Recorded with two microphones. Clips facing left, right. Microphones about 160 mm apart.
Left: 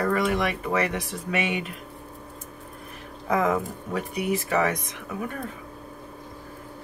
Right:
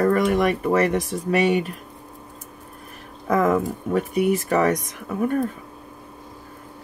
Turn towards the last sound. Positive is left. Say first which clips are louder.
# right 10 dB
turn(degrees=-45)  # may be behind; listen again after turning